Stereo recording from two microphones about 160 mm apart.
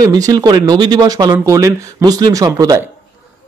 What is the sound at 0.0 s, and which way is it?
Speech, 25° right (ahead or behind).